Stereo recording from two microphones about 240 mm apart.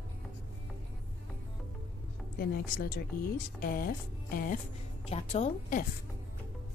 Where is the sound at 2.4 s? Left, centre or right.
Left.